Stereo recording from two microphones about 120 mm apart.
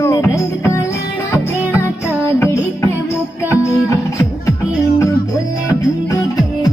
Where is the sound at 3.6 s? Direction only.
25° left (ahead or behind).